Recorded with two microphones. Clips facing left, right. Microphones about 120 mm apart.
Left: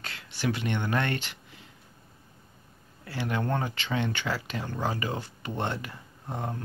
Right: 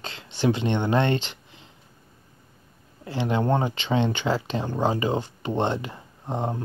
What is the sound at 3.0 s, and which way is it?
Speech, 20° right (ahead or behind).